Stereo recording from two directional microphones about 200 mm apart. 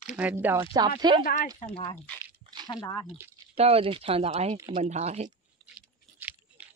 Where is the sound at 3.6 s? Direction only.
30° right (ahead or behind).